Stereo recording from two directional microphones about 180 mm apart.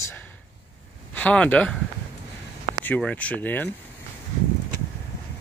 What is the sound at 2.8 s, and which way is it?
Speech, 10° left (ahead or behind).